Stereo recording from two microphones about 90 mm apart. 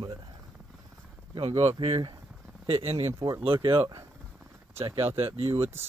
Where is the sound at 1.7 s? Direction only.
90° right.